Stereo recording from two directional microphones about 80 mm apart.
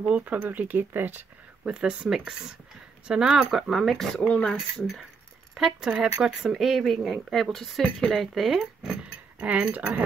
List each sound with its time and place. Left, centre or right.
0.0 s speech: centre
1.6 s speech: centre
3.5 s speech: centre
5.5 s speech: centre
9.4 s speech: centre